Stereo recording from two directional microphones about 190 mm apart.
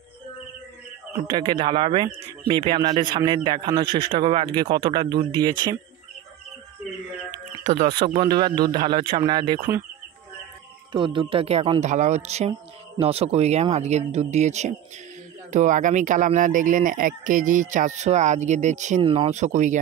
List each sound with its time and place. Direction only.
1.2 s speech: 25° right (ahead or behind)
7.7 s speech: 35° right (ahead or behind)
8.2 s speech: 25° right (ahead or behind)
10.9 s speech: 25° right (ahead or behind)